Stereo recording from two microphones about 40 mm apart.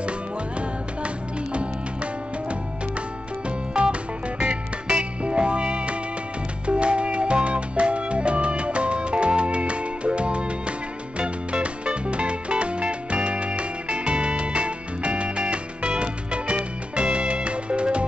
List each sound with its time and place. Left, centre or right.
0.6 s music: right
3.4 s music: right